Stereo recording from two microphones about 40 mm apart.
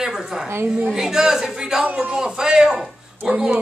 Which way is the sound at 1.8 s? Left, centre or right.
Right.